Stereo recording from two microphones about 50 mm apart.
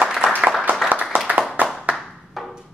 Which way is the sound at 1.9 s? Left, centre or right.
Centre.